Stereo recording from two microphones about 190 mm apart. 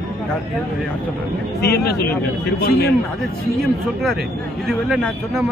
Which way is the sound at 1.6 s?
60° left (ahead or behind).